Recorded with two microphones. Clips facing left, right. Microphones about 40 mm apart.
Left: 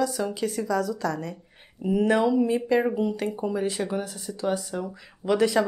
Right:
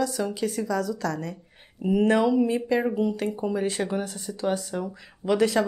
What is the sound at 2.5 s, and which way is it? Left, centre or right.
Speech, centre.